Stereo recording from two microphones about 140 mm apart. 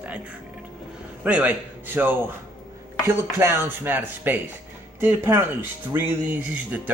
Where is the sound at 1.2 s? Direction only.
10° right (ahead or behind).